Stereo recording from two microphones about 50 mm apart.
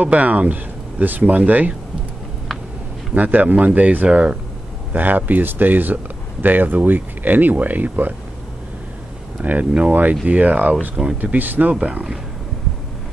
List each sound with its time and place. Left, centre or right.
0.0 s speech: right
3.2 s speech: right
4.9 s speech: right
9.4 s speech: right
11.7 s speech: right